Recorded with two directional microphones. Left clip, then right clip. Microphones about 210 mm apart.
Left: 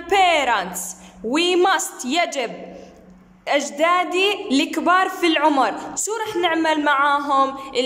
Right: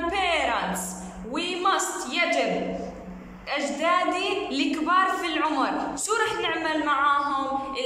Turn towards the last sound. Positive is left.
turn(degrees=40)  # may be behind; listen again after turning